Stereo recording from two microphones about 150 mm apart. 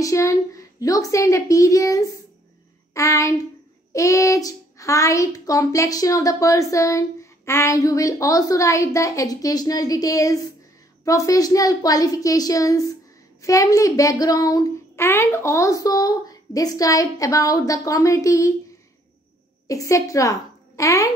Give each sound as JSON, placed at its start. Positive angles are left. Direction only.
{"t": 0.0, "sound": "a child's voice", "side_deg": 20}
{"t": 19.7, "sound": "a woman's voice", "side_deg": 20}